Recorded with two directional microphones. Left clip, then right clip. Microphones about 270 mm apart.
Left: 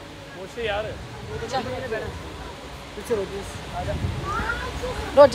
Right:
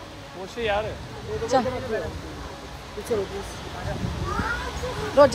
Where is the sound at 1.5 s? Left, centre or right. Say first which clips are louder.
Right 6 dB; right.